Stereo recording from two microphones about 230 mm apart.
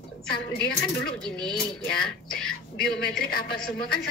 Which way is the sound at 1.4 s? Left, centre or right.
Centre.